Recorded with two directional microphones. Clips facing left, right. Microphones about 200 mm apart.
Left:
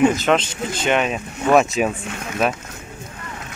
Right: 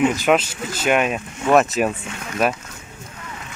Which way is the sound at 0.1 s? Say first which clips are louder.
Right 1 dB; 10° right (ahead or behind).